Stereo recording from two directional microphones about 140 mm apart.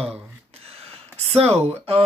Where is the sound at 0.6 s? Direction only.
45° right (ahead or behind).